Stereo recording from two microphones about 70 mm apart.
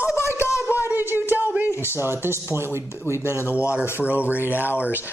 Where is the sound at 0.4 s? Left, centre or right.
Left.